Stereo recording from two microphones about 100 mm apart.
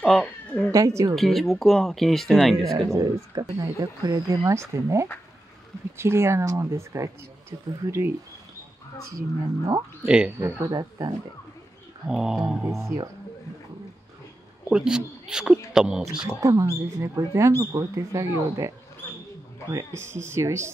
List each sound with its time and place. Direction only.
0.0 s speech: 10° left (ahead or behind)
0.7 s speech: 35° right (ahead or behind)
1.1 s speech: centre (ahead or behind)
2.9 s speech: 40° right (ahead or behind)
10.0 s speech: 10° right (ahead or behind)
10.6 s speech: 40° right (ahead or behind)
12.1 s speech: 5° right (ahead or behind)
12.7 s speech: 30° right (ahead or behind)
14.7 s speech: 5° right (ahead or behind)
16.3 s speech: 35° right (ahead or behind)
19.7 s speech: 25° right (ahead or behind)